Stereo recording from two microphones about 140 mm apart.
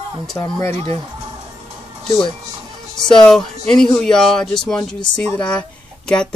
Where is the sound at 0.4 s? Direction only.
20° left (ahead or behind).